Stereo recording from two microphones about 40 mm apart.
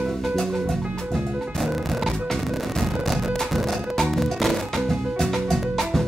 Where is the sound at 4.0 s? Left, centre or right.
Centre.